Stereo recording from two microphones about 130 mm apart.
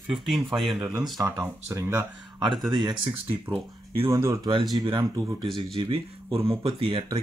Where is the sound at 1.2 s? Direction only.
20° right (ahead or behind).